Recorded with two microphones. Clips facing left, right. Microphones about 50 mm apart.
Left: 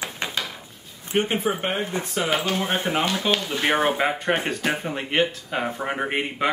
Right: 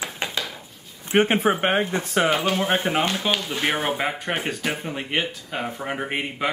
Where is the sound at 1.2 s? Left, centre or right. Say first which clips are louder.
Right 4 dB; right.